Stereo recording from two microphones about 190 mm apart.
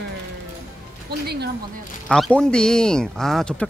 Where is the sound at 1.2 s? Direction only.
60° right (ahead or behind).